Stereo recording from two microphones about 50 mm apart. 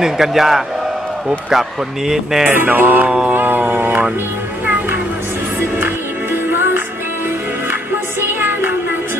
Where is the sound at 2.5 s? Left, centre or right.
Right.